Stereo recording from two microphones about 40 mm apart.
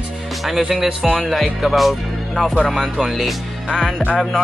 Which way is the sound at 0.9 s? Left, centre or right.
Right.